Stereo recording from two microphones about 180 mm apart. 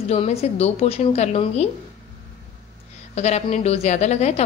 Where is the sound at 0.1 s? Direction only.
35° left (ahead or behind).